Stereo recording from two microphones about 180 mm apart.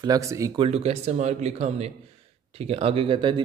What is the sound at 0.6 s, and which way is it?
Speech, 35° right (ahead or behind).